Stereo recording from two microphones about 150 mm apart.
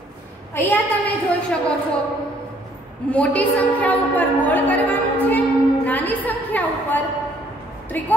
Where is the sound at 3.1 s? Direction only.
10° left (ahead or behind).